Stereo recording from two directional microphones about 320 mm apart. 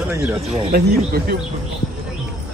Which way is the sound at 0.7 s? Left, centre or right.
Right.